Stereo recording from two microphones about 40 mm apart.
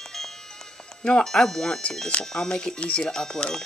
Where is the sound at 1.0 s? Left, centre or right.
Left.